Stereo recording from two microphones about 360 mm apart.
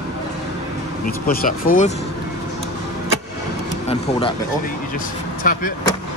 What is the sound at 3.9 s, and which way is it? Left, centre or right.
Speech, centre.